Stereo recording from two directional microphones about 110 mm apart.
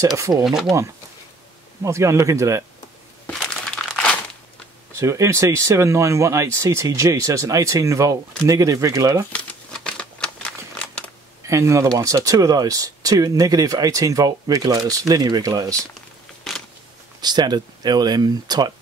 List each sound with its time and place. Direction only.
0.0 s speech: 30° right (ahead or behind)
0.5 s speech: 5° right (ahead or behind)
1.8 s speech: 25° right (ahead or behind)
3.3 s crumpling: 10° left (ahead or behind)
4.9 s speech: 25° right (ahead or behind)
9.3 s crumpling: 10° left (ahead or behind)
11.4 s speech: 25° right (ahead or behind)
16.5 s a sound: centre (ahead or behind)
17.2 s speech: 40° right (ahead or behind)